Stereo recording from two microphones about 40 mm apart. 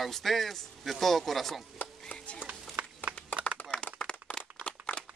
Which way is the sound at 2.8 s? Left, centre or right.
Right.